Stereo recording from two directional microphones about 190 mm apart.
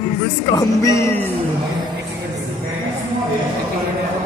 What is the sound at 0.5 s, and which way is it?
Music, 15° left (ahead or behind).